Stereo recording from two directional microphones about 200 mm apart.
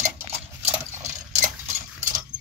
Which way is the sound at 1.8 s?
40° right (ahead or behind).